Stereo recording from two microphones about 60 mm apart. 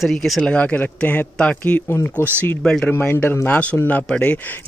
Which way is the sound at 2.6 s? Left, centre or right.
Centre.